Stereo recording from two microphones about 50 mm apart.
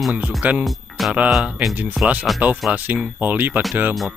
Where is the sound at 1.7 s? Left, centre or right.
Right.